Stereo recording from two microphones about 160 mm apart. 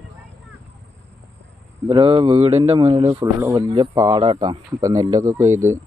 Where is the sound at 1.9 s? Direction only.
30° right (ahead or behind).